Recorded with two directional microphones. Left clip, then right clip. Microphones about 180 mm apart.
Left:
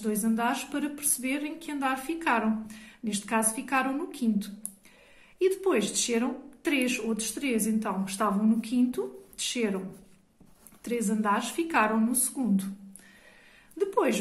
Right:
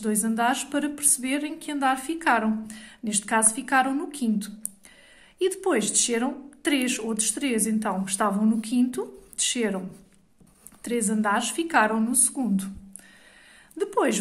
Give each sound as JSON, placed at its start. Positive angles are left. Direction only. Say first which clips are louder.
{"t": 0.0, "sound": "a woman's voice", "louder": "right 4 dB", "side_deg": -35}
{"t": 10.8, "sound": "a woman's voice", "louder": "right 4 dB", "side_deg": -35}
{"t": 13.7, "sound": "a woman's voice", "louder": "right 2 dB", "side_deg": -35}